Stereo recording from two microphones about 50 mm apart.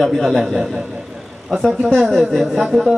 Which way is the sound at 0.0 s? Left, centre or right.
Centre.